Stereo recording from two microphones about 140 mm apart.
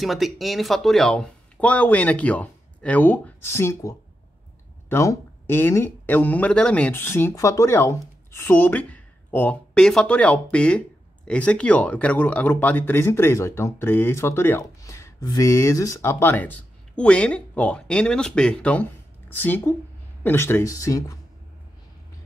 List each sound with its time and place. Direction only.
0.0 s speech: centre (ahead or behind); by 21.2 s 25° left (ahead or behind)